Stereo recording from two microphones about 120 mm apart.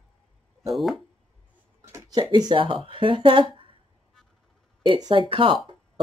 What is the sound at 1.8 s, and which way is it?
Speech, 25° right (ahead or behind).